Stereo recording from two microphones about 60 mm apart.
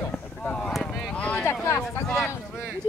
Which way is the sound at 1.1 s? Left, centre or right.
Left.